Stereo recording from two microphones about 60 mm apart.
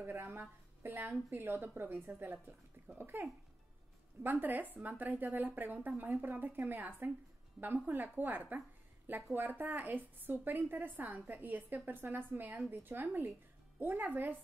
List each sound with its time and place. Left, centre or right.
0.0 s a woman's voice: right